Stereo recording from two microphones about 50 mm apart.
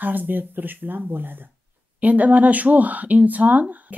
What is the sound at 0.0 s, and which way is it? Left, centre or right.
Speech, right.